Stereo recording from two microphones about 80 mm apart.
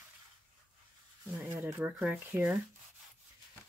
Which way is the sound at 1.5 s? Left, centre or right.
Right.